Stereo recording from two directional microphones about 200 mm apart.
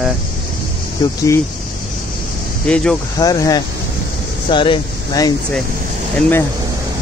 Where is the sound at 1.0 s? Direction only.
20° left (ahead or behind).